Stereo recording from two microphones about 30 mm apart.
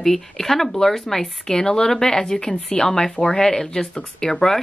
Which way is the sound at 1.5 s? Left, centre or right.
Left.